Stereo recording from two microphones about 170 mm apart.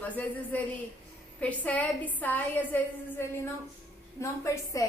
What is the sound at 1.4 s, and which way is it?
A woman's voice, 10° left (ahead or behind).